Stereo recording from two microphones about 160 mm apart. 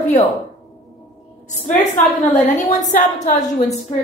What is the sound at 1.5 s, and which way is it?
A woman's voice, 50° left (ahead or behind).